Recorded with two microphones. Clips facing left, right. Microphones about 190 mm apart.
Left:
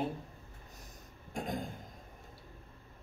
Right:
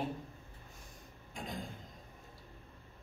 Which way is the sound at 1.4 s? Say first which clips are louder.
Left 6 dB; 45° left (ahead or behind).